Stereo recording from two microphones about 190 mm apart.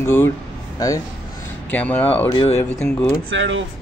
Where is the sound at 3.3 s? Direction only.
80° right.